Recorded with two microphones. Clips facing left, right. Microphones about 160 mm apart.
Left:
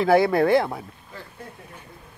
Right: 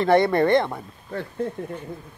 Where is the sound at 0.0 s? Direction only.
5° left (ahead or behind).